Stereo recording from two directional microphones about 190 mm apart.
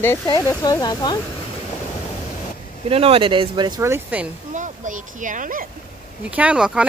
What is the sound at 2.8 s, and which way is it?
Speech, 30° right (ahead or behind).